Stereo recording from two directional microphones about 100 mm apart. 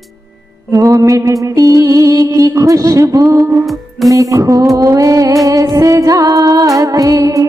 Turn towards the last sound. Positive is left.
turn(degrees=-35)  # may be behind; listen again after turning